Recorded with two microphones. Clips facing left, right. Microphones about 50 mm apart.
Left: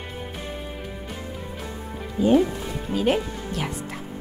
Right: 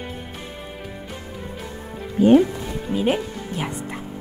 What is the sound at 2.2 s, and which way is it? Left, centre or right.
Speech, right.